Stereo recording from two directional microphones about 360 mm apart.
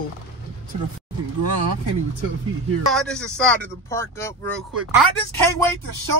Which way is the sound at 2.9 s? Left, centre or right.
Centre.